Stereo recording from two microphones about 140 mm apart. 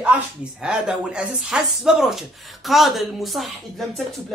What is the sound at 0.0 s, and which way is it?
A woman's voice, 5° right (ahead or behind).